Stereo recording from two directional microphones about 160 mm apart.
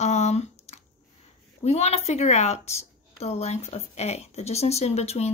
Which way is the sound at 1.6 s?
45° left (ahead or behind).